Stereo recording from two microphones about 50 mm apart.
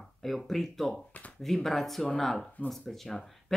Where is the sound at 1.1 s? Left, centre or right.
Left.